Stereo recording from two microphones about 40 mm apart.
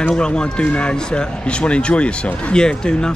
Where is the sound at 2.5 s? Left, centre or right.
Centre.